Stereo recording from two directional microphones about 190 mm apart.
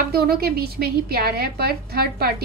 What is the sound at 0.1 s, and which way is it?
A woman's voice, 55° right (ahead or behind).